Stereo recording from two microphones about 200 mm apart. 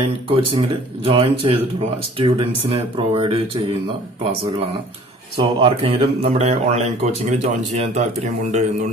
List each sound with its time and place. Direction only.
0.3 s speech: 25° right (ahead or behind)
5.4 s speech: 25° right (ahead or behind)